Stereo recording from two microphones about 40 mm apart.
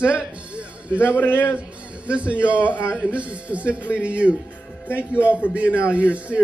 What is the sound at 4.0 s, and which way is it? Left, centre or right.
Speech, right.